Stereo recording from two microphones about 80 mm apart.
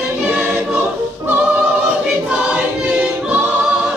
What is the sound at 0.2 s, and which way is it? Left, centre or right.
Choir, centre.